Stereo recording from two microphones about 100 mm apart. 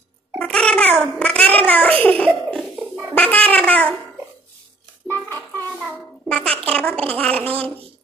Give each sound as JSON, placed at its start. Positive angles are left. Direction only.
{"t": 0.4, "sound": "a sound", "side_deg": 10}
{"t": 3.2, "sound": "cat", "side_deg": 15}
{"t": 5.0, "sound": "music", "side_deg": 20}
{"t": 6.3, "sound": "a sound", "side_deg": 10}
{"t": 6.7, "sound": "babbling", "side_deg": 15}
{"t": 7.1, "sound": "gargling", "side_deg": 15}